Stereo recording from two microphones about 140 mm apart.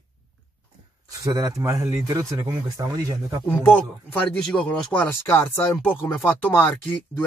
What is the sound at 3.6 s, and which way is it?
Speech, 10° left (ahead or behind).